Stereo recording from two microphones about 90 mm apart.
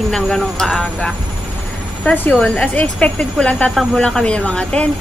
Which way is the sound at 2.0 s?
20° left (ahead or behind).